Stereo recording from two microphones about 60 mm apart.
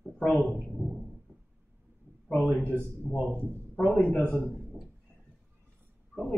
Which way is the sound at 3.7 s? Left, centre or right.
Centre.